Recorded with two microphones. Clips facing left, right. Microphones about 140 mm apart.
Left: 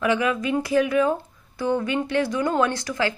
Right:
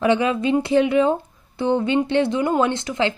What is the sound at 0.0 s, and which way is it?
A woman's voice, 30° right (ahead or behind).